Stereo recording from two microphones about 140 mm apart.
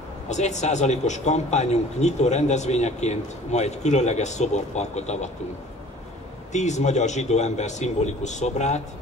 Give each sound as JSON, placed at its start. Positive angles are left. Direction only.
{"t": 0.3, "sound": "a man's voice", "side_deg": 55}
{"t": 6.5, "sound": "a man's voice", "side_deg": 55}